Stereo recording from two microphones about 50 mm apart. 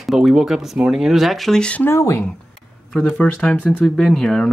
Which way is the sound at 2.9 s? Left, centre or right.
Centre.